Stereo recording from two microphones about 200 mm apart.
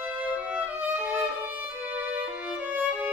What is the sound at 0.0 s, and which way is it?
Violin, 10° right (ahead or behind).